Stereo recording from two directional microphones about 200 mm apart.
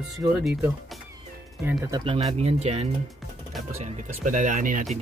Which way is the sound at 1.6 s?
15° right (ahead or behind).